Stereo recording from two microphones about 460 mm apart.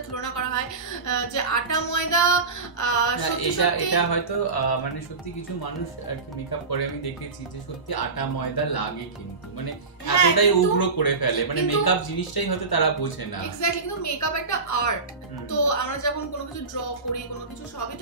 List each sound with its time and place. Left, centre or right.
0.1 s a woman's voice: left
7.9 s a man's voice: left
10.0 s a man's voice: left